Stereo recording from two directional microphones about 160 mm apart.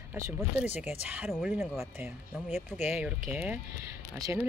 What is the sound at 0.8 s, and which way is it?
Speech, 10° right (ahead or behind).